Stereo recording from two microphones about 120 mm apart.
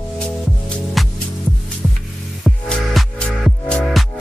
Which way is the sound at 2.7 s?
5° left (ahead or behind).